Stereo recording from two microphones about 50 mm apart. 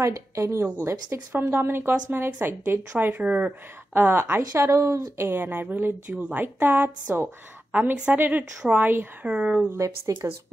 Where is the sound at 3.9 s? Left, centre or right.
Right.